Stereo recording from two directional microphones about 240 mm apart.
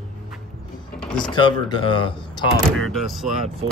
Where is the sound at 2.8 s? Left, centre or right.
Centre.